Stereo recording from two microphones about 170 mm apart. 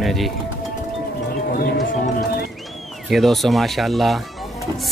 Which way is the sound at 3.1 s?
Centre (ahead or behind).